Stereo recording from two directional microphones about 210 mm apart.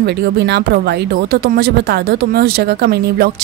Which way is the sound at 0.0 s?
50° right (ahead or behind).